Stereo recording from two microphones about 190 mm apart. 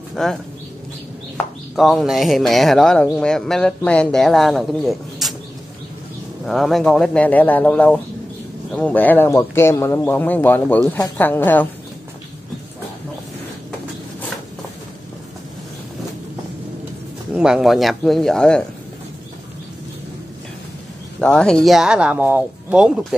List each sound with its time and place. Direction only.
0.1 s speech: centre (ahead or behind)
1.8 s speech: centre (ahead or behind)
6.4 s speech: centre (ahead or behind)
17.3 s speech: 5° right (ahead or behind)
21.2 s speech: 5° left (ahead or behind)